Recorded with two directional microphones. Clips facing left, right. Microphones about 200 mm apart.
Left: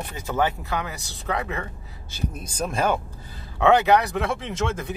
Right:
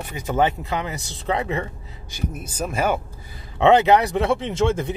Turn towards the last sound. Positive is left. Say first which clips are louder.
# right 6 dB
turn(degrees=-30)  # may be behind; listen again after turning